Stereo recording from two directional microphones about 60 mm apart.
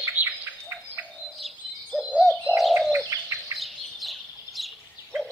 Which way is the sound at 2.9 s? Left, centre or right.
Right.